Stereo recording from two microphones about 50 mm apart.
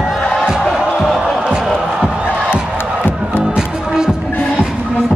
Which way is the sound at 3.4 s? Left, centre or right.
Centre.